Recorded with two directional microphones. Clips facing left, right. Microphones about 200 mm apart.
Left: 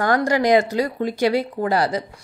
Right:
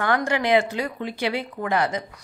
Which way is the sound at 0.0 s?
40° left (ahead or behind).